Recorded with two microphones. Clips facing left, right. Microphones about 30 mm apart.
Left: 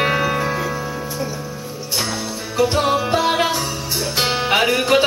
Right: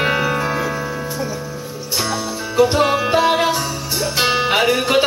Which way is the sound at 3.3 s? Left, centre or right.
Centre.